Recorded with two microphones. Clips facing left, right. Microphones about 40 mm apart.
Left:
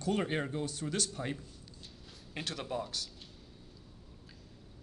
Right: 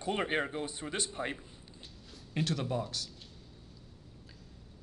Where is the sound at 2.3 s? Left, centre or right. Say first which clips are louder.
Right 4 dB; centre.